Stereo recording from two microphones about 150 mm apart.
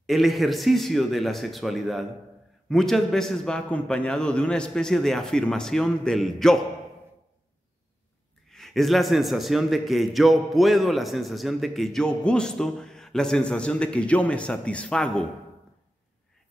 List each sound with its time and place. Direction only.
0.0 s a man's voice: centre (ahead or behind)
8.5 s a man's voice: centre (ahead or behind)